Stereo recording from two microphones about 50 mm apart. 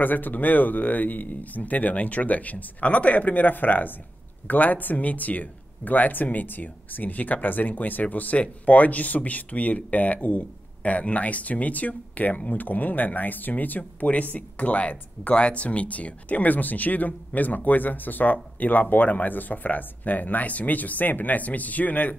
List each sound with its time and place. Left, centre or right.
0.0 s speech: left